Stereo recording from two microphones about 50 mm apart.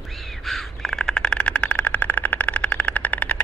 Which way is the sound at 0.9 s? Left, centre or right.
Centre.